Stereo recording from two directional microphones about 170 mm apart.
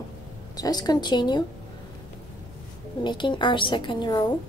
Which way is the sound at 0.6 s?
25° left (ahead or behind).